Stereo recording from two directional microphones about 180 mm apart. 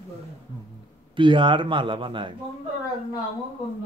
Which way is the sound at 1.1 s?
25° right (ahead or behind).